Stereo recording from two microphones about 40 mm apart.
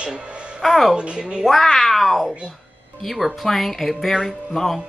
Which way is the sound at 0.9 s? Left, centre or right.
Right.